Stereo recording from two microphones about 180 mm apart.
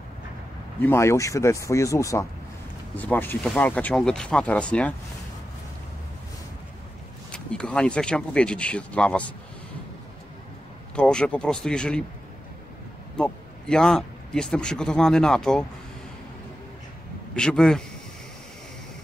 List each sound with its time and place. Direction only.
0.8 s speech: 15° left (ahead or behind)
7.2 s speech: 5° left (ahead or behind)
11.0 s speech: 5° left (ahead or behind)
13.2 s speech: 5° left (ahead or behind)
17.4 s speech: 5° left (ahead or behind)